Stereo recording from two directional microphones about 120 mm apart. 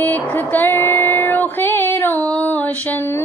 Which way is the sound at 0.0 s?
15° left (ahead or behind).